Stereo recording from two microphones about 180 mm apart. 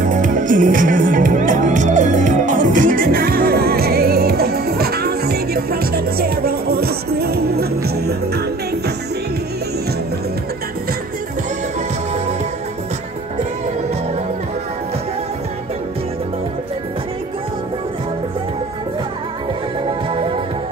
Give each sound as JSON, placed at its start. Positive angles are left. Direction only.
{"t": 0.0, "sound": "music", "side_deg": -45}